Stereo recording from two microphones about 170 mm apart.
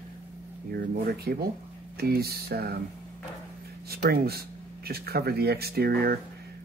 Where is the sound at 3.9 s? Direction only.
65° right (ahead or behind).